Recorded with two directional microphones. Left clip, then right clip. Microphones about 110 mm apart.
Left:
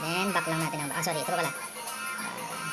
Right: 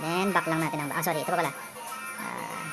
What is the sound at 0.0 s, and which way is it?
Speech, 25° right (ahead or behind).